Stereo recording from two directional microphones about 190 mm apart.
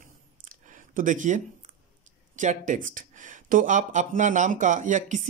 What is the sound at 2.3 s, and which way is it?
Speech, 40° right (ahead or behind).